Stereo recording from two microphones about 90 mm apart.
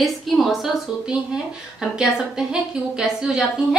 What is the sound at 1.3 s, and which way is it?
Speech, 5° right (ahead or behind).